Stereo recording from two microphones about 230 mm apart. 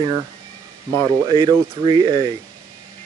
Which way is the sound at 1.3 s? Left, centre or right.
Centre.